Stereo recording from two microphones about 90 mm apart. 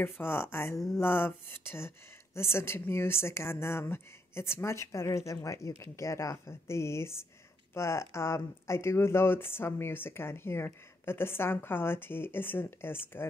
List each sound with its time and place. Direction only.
0.0 s speech: 25° left (ahead or behind)